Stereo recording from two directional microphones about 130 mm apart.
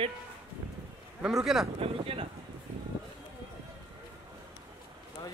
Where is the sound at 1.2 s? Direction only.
5° right (ahead or behind).